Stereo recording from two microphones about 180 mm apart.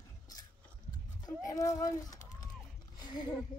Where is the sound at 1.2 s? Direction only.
20° left (ahead or behind).